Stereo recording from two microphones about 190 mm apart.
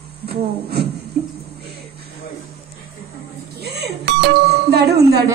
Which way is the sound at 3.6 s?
60° right (ahead or behind).